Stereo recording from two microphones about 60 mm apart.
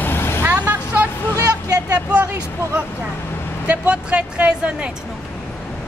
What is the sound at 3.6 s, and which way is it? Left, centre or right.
Speech, right.